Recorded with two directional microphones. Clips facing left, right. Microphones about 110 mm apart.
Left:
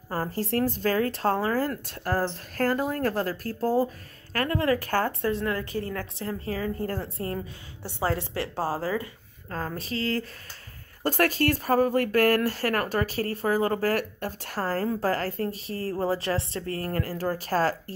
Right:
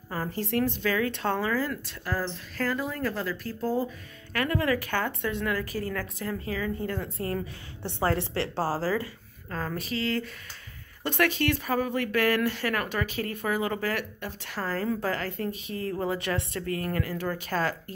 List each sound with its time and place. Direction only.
0.1 s speech: 40° left (ahead or behind)
8.0 s a woman's voice: 15° left (ahead or behind); by 17.9 s 35° left (ahead or behind)